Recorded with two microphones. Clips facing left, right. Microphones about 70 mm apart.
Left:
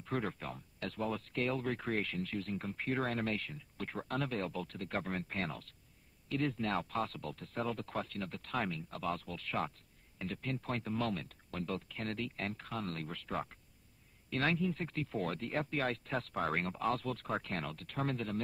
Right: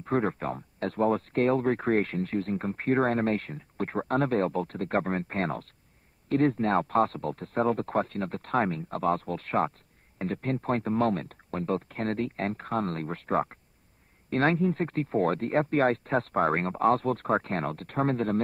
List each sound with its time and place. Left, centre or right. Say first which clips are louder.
0.0 s speech: right 11 dB; right